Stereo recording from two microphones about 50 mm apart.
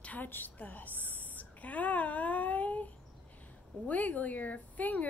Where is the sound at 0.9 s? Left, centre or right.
Right.